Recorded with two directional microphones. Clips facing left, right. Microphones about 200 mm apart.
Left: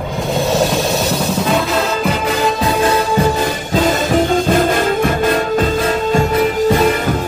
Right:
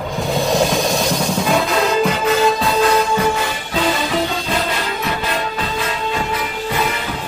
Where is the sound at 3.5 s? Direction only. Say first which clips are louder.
Left 4 dB; 45° left (ahead or behind).